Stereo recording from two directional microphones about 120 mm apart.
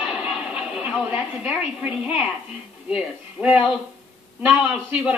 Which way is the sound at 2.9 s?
10° right (ahead or behind).